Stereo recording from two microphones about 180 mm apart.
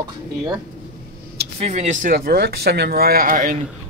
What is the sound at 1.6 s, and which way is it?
Speech, 35° right (ahead or behind).